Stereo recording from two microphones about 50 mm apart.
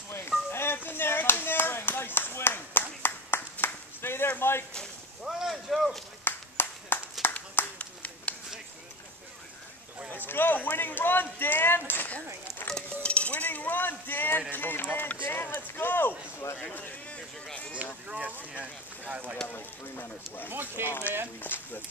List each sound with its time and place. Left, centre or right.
0.5 s a sound: left
0.7 s clapping: left
3.6 s a sound: left
4.4 s speech: left
5.2 s vehicle: centre
6.2 s clapping: left
7.8 s a sound: left
10.2 s speech: left
13.0 s cutlery: left
14.5 s speech: left
18.0 s speech: right
19.4 s speech: left
20.4 s speech: right
21.4 s speech: left